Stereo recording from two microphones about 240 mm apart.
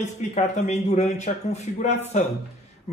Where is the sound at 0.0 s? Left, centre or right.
Left.